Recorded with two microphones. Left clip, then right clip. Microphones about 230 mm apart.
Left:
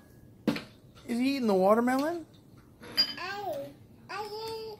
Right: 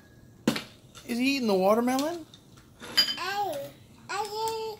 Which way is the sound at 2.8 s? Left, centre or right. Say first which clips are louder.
Right 4 dB; centre.